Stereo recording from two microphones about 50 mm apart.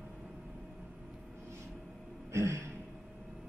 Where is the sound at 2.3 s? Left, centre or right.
Right.